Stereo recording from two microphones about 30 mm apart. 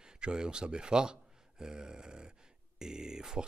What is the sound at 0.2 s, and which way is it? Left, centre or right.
Speech, right.